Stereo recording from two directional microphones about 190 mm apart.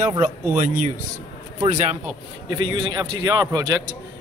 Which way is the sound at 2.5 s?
25° right (ahead or behind).